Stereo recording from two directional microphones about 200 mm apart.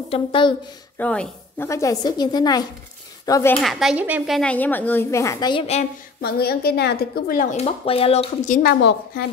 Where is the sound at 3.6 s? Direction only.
Centre (ahead or behind); by 5.8 s 30° left (ahead or behind).